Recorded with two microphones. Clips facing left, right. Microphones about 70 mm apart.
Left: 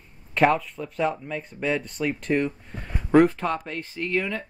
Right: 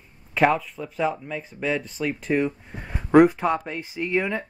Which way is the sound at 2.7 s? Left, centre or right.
Centre.